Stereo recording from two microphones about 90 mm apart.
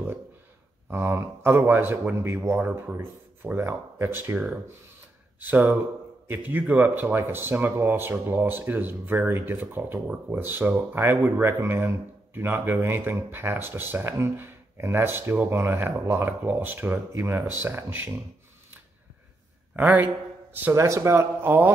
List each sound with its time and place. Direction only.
0.8 s speech: 20° right (ahead or behind)
5.4 s speech: 20° right (ahead or behind)
19.7 s speech: 20° right (ahead or behind)
20.7 s speech: 35° right (ahead or behind)